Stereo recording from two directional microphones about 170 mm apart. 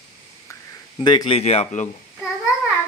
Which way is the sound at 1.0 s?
25° left (ahead or behind).